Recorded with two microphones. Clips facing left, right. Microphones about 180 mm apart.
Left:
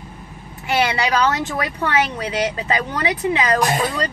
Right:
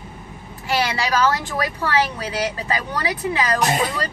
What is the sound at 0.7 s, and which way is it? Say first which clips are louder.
A woman's voice: left 2 dB; 20° left (ahead or behind).